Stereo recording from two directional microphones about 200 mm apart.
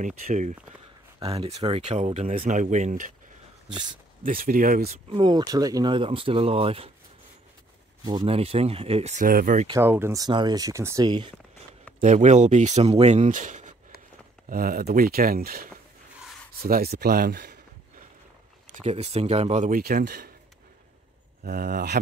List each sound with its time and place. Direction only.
0.0 s speech: 40° right (ahead or behind)
3.7 s speech: 25° right (ahead or behind)
4.2 s speech: 45° right (ahead or behind)
5.1 s speech: 20° right (ahead or behind)
8.0 s speech: 20° right (ahead or behind); by 9.7 s 45° right (ahead or behind)
9.7 s speech: 10° right (ahead or behind)
12.0 s speech: 35° right (ahead or behind)
18.8 s speech: 35° right (ahead or behind); by 20.3 s 50° right (ahead or behind)
21.5 s speech: 50° right (ahead or behind)